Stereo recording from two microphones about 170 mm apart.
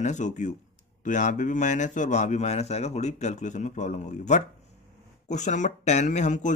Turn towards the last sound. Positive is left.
turn(degrees=45)  # may be behind; listen again after turning